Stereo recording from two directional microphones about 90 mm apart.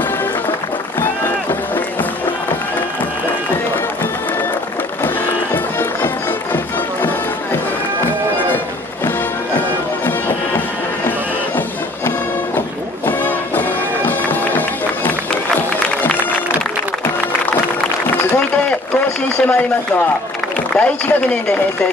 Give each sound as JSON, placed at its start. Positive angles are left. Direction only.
{"t": 1.0, "sound": "run", "side_deg": 25}
{"t": 5.0, "sound": "music", "side_deg": 25}
{"t": 9.6, "sound": "music", "side_deg": 20}
{"t": 19.2, "sound": "a sound", "side_deg": 15}
{"t": 20.7, "sound": "speech", "side_deg": 10}